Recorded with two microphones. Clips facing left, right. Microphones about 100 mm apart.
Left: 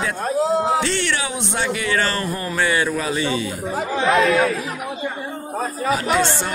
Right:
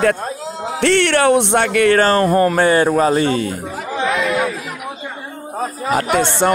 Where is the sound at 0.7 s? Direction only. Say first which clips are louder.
Right 7 dB; 65° right (ahead or behind).